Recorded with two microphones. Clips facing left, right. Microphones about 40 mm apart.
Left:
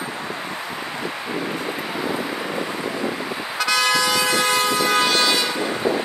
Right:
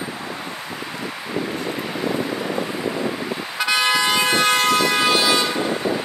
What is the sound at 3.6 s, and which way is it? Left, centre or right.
Vehicle, right.